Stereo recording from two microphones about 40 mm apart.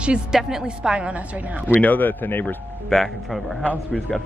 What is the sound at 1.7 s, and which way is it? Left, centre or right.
Speech, left.